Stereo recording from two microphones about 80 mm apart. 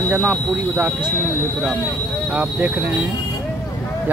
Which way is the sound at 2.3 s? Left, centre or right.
Centre.